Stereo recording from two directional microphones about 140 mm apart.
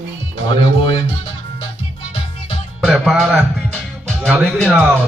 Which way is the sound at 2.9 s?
Centre (ahead or behind).